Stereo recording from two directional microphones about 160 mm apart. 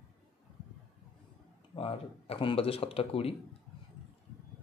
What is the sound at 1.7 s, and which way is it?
Speech, 35° left (ahead or behind).